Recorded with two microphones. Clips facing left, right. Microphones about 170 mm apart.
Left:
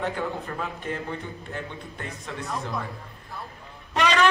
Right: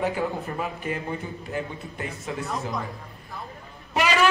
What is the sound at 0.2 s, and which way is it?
Speech, 10° right (ahead or behind).